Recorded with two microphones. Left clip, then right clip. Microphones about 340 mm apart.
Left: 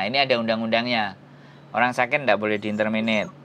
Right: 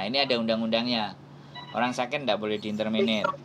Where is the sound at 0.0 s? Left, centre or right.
Left.